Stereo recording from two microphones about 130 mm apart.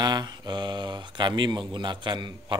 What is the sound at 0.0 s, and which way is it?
Speech, 30° right (ahead or behind).